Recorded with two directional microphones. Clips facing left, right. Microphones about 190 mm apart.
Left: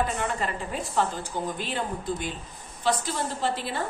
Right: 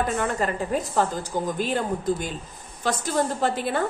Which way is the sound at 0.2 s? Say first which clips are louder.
Right 4 dB; 45° right (ahead or behind).